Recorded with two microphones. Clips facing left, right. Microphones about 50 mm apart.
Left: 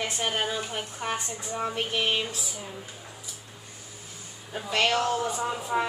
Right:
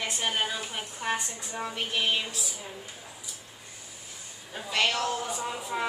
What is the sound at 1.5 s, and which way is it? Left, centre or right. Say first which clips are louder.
Speech: left 3 dB; left.